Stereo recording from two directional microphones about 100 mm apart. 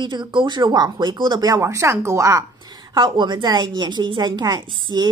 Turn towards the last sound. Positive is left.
turn(degrees=-45)  # may be behind; listen again after turning